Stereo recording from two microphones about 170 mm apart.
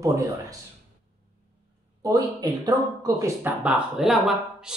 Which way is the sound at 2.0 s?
20° right (ahead or behind).